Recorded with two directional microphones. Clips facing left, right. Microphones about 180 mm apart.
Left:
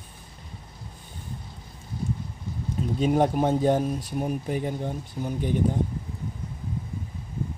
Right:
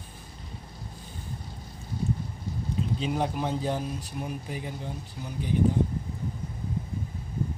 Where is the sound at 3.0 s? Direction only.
50° left (ahead or behind).